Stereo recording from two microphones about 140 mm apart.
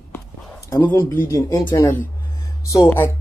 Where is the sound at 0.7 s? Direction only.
15° left (ahead or behind).